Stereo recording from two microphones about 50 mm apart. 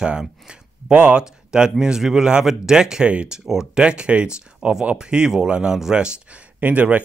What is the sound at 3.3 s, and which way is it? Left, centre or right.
Speech, centre.